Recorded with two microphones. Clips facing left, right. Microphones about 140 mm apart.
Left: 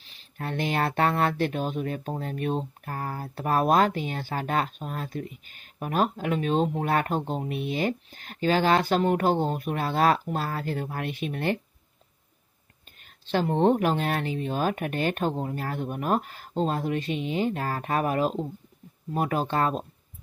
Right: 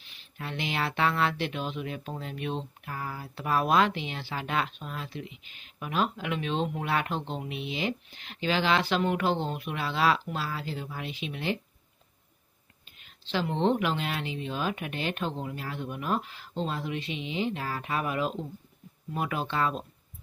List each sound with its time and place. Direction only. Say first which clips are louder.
0.0 s speech: left 5 dB; 40° left (ahead or behind)
13.0 s speech: left 5 dB; 50° left (ahead or behind)